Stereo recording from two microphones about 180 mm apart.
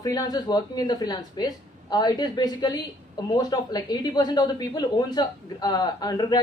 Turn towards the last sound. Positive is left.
turn(degrees=20)  # may be behind; listen again after turning